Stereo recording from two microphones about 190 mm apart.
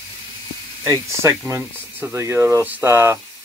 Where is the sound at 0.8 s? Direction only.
15° right (ahead or behind).